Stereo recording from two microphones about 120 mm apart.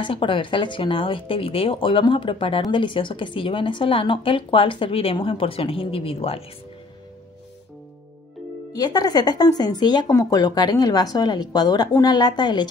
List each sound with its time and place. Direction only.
0.0 s speech: 45° left (ahead or behind)
8.7 s speech: 35° left (ahead or behind)